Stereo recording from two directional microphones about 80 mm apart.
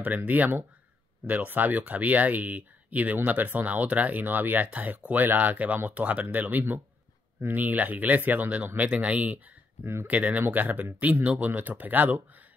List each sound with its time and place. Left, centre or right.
0.0 s speech: centre